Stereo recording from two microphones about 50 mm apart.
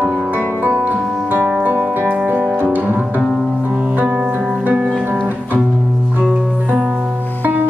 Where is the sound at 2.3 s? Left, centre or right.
Right.